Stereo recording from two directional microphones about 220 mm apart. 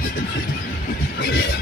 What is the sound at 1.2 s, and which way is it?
Vehicle, 50° left (ahead or behind).